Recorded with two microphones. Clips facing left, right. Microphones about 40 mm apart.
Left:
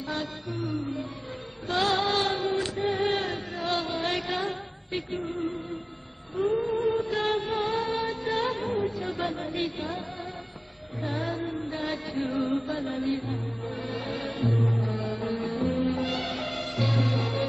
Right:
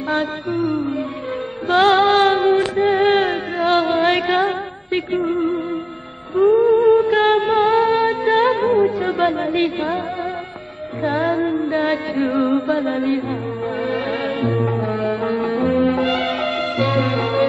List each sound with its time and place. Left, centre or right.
0.1 s music: right
6.3 s music: right
7.1 s music: right
11.0 s music: right
12.6 s chant: right
13.8 s music: right
15.6 s music: right
15.9 s music: right